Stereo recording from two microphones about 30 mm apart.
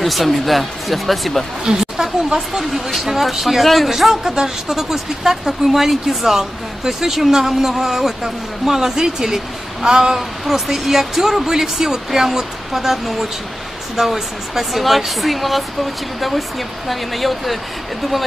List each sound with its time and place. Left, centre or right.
0.0 s speech: centre
1.7 s a sound: right
2.7 s speech: centre
4.4 s speech: centre
9.8 s a sound: right
10.1 s speech: centre